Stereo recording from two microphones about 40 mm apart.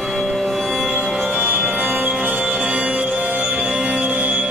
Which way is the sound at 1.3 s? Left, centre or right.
Right.